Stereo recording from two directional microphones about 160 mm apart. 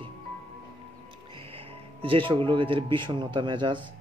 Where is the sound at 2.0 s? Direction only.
30° right (ahead or behind).